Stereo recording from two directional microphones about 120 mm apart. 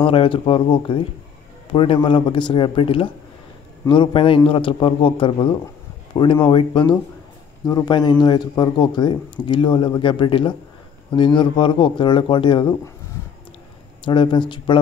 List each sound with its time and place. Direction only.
0.0 s a man's voice: 45° left (ahead or behind)
7.6 s speech: 35° left (ahead or behind)
14.0 s speech: 40° left (ahead or behind)